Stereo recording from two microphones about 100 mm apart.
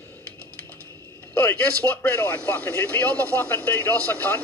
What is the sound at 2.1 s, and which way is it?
Speech, 15° left (ahead or behind).